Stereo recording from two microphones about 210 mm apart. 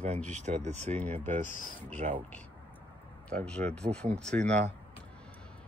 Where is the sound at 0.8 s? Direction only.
10° left (ahead or behind).